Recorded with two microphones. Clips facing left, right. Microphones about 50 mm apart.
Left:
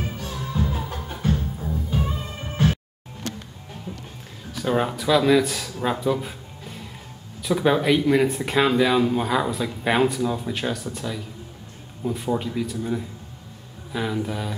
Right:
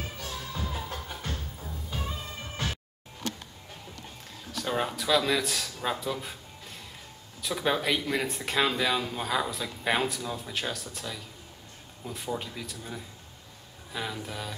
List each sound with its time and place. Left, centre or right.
0.2 s music: centre
4.5 s speech: centre
12.0 s speech: centre